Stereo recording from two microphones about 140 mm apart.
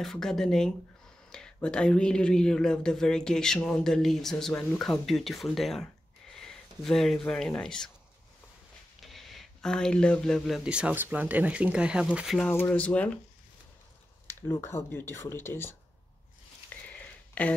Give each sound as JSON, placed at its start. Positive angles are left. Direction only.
{"t": 0.0, "sound": "speech", "side_deg": 5}
{"t": 9.0, "sound": "speech", "side_deg": 0}
{"t": 12.4, "sound": "speech", "side_deg": 15}
{"t": 14.5, "sound": "speech", "side_deg": 20}
{"t": 16.9, "sound": "a sound", "side_deg": 10}